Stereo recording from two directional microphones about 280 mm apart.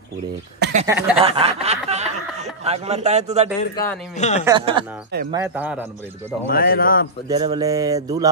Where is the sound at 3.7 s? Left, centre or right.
Centre.